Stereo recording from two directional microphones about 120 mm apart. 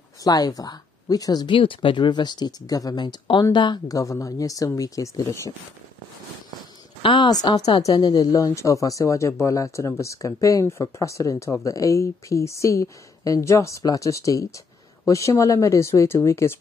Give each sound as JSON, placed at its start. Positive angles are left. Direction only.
{"t": 0.2, "sound": "a woman's voice", "side_deg": 30}
{"t": 7.0, "sound": "a woman's voice", "side_deg": 40}